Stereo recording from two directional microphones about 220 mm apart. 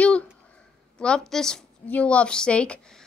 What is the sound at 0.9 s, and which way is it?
A woman's voice, 5° left (ahead or behind).